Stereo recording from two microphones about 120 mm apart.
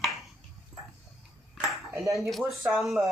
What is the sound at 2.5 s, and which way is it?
Speech, centre (ahead or behind).